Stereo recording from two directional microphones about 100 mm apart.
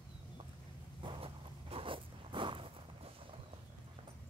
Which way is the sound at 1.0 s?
65° right (ahead or behind).